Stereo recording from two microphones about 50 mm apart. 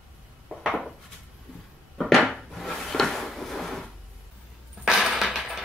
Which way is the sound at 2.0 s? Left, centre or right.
Centre.